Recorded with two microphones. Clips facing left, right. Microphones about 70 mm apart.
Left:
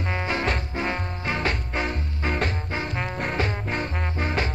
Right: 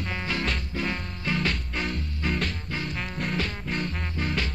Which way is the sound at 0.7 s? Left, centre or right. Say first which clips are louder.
Left 3 dB; left.